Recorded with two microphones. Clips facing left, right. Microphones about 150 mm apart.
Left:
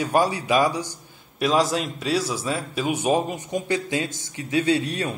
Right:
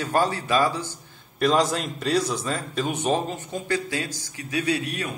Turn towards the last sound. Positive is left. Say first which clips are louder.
# left 4 dB
turn(degrees=30)  # may be behind; listen again after turning